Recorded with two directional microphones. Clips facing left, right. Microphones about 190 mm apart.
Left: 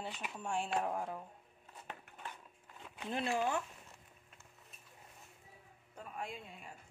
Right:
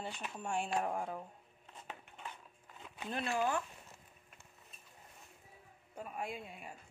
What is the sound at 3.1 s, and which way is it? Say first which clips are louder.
Speech: even; 20° left (ahead or behind).